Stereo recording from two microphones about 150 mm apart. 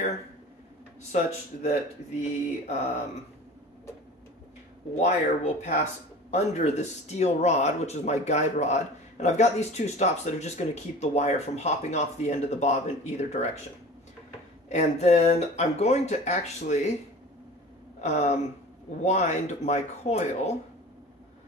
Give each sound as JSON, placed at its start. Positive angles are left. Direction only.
{"t": 1.1, "sound": "speech", "side_deg": 55}
{"t": 4.9, "sound": "speech", "side_deg": 50}
{"t": 14.7, "sound": "speech", "side_deg": 50}
{"t": 18.0, "sound": "speech", "side_deg": 45}